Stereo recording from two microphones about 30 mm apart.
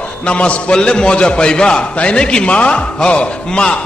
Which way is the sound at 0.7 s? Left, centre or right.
Left.